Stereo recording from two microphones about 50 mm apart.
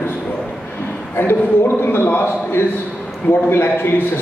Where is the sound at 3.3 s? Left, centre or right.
Left.